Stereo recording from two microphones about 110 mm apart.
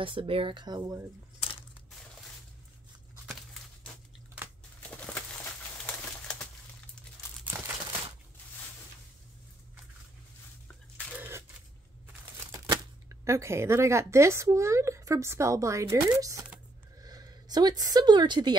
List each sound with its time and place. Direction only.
0.0 s speech: 55° right (ahead or behind)
4.8 s bird: 15° left (ahead or behind)
7.4 s crumpling: 20° right (ahead or behind)
11.1 s a sound: 20° right (ahead or behind)
12.5 s speech: 30° right (ahead or behind)